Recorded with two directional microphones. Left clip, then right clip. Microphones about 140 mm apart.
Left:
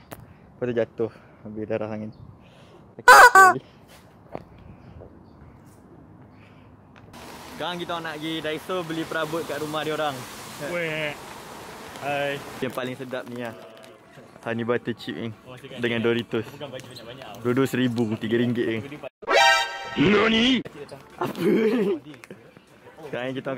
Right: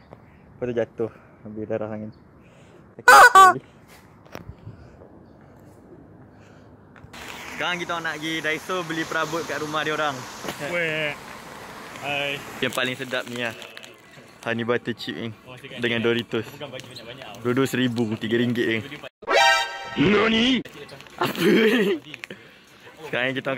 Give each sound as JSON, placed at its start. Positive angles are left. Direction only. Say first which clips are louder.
{"t": 0.6, "sound": "speech", "louder": "even", "side_deg": 10}
{"t": 7.5, "sound": "speech", "louder": "right 3 dB", "side_deg": 5}
{"t": 10.7, "sound": "speech", "louder": "right 2 dB", "side_deg": -10}
{"t": 12.0, "sound": "speech", "louder": "even", "side_deg": 45}
{"t": 12.5, "sound": "speech", "louder": "right 5 dB", "side_deg": 0}